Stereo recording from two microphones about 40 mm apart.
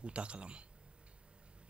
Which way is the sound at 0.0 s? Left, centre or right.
Right.